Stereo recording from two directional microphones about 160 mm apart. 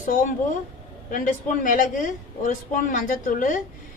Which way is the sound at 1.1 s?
55° left (ahead or behind).